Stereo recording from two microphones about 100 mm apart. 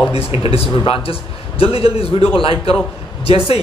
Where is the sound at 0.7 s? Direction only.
60° left (ahead or behind).